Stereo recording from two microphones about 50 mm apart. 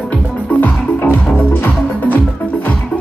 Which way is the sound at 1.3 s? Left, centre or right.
Left.